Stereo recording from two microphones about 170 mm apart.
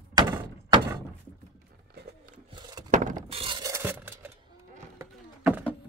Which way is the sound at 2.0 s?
60° right (ahead or behind).